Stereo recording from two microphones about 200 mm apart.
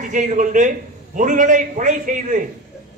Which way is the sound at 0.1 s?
40° right (ahead or behind).